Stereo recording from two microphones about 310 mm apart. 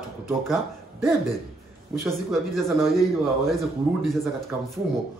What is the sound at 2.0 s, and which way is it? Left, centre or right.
A man's voice, centre.